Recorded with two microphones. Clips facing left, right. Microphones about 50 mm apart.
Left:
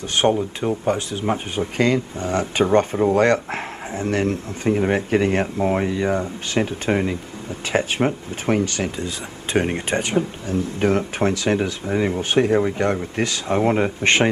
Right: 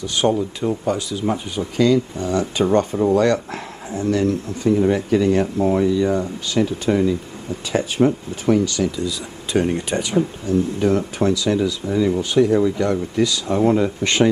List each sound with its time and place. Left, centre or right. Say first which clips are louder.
0.1 s speech: left 1 dB; left